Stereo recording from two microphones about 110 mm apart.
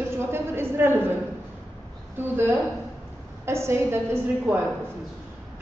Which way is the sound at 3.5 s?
25° right (ahead or behind).